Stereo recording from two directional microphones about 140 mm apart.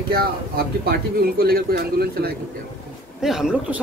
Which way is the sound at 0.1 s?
90° right.